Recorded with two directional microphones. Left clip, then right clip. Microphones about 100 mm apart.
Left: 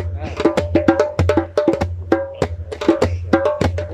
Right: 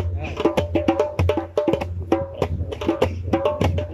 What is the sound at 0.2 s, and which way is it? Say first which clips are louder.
Music: left 4 dB; 20° right (ahead or behind).